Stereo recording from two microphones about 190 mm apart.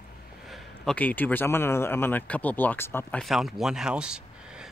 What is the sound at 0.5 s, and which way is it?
Speech, 5° left (ahead or behind).